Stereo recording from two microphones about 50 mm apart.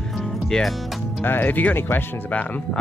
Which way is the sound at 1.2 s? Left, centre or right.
Left.